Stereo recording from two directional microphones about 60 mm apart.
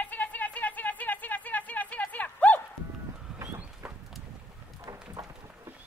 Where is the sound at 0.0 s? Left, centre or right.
Left.